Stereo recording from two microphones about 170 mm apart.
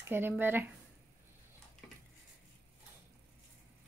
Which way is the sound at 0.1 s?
10° right (ahead or behind).